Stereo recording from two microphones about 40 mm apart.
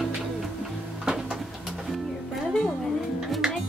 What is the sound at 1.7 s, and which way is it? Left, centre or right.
Music, centre.